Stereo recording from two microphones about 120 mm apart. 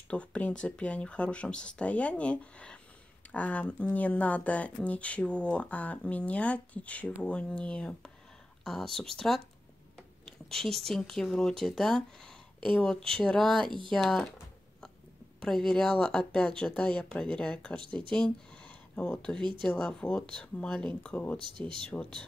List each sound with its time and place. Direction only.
0.1 s speech: 10° left (ahead or behind)
15.4 s speech: 5° left (ahead or behind)
19.3 s speech: 40° right (ahead or behind)
19.6 s speech: 5° left (ahead or behind)
21.4 s speech: 45° right (ahead or behind)